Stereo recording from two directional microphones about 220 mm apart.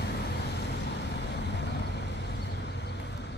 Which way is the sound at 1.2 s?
50° left (ahead or behind).